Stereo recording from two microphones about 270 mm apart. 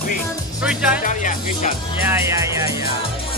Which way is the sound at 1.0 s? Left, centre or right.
Left.